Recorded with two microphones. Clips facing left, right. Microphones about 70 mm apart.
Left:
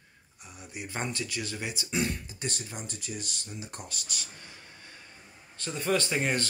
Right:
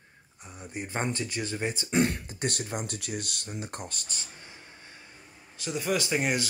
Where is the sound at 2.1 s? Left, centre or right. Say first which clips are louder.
Right 3 dB; right.